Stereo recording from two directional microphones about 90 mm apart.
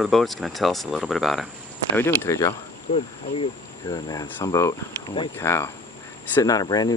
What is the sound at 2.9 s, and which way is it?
Speech, 90° left.